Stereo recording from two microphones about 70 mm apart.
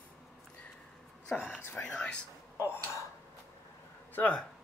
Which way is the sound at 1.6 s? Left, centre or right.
Left.